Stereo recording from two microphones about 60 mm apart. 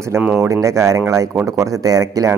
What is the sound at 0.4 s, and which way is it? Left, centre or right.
A man's voice, right.